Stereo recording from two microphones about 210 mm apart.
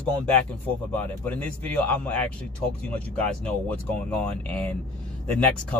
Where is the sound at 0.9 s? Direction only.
10° left (ahead or behind).